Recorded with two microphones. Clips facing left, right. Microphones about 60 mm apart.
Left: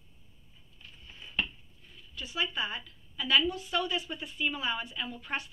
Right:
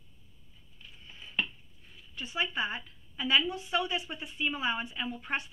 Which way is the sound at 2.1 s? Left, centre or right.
Right.